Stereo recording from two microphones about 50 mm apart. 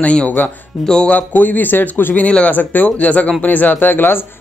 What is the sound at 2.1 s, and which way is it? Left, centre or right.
Speech, left.